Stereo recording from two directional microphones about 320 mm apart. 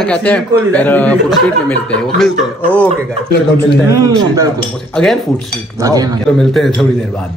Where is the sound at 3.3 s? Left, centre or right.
Left.